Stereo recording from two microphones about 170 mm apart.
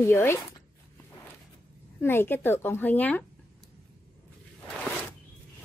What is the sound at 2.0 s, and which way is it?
A woman's voice, 15° left (ahead or behind).